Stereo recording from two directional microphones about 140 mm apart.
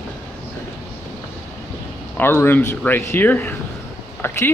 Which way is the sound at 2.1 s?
15° left (ahead or behind).